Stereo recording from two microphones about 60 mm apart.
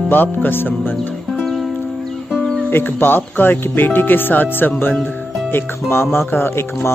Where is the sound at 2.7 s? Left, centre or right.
Left.